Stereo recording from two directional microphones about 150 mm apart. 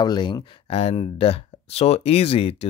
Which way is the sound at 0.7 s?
45° left (ahead or behind).